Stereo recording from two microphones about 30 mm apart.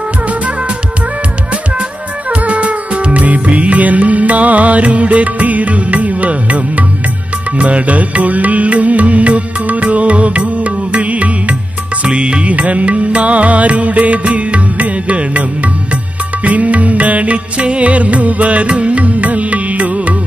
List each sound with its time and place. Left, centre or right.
2.3 s music: right
3.1 s music: right
12.1 s music: right